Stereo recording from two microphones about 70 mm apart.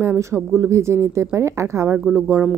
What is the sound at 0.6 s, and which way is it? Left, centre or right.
Speech, right.